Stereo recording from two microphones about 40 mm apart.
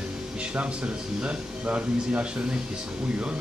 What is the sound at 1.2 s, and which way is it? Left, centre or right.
Speech, right.